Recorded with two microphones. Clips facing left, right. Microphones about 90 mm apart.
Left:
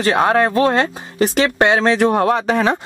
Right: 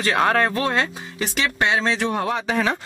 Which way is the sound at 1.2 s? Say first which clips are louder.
Left 8 dB; 45° left (ahead or behind).